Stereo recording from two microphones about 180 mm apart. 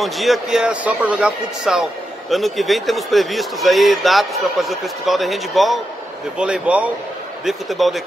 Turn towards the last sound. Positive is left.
turn(degrees=0)  # may be behind; listen again after turning